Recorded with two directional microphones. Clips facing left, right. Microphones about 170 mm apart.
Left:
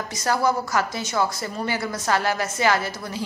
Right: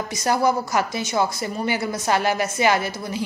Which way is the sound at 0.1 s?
20° right (ahead or behind).